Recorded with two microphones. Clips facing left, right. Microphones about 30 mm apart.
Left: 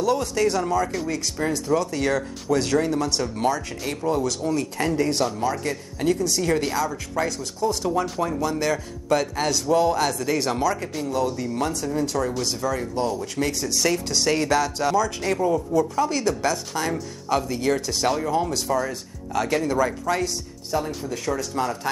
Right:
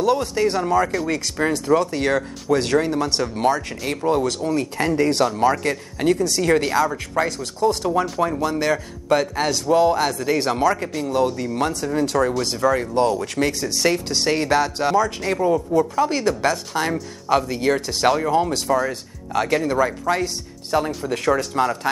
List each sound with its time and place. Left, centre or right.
0.0 s speech: right
2.8 s speech: right
7.9 s speech: centre
8.4 s a man's voice: right
13.4 s speech: right
15.1 s a man's voice: centre
15.7 s speech: right
20.7 s speech: right